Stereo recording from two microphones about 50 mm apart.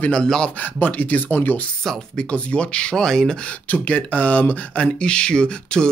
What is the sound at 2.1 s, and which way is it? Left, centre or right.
Speech, left.